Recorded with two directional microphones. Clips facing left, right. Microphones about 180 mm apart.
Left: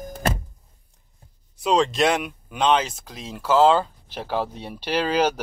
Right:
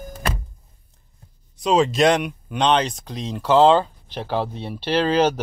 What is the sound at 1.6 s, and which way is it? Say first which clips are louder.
Speech: right 3 dB; centre (ahead or behind).